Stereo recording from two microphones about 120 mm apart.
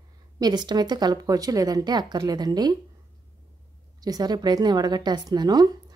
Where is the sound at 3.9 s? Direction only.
35° right (ahead or behind).